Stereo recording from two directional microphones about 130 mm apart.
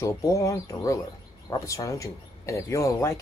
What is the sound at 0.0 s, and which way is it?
A woman's voice, 25° left (ahead or behind).